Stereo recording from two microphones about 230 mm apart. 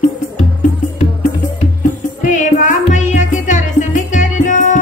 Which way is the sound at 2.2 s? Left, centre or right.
Left.